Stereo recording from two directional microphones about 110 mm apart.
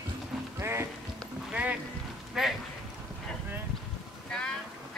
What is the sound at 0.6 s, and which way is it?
Music, 25° right (ahead or behind).